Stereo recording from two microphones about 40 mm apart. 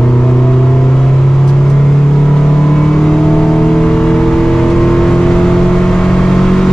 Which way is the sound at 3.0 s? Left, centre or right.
Centre.